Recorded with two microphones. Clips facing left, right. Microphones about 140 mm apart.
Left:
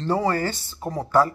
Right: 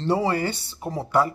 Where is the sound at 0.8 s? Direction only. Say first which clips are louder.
Left 1 dB; 15° right (ahead or behind).